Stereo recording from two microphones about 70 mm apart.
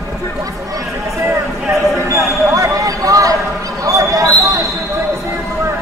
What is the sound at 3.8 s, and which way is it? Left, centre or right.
Basketball bounce, right.